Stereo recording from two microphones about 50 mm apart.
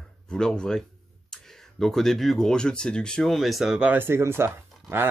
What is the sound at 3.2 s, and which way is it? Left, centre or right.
Speech, centre.